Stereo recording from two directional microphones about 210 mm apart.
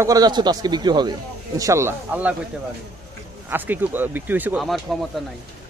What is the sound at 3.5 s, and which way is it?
Speech, 10° right (ahead or behind).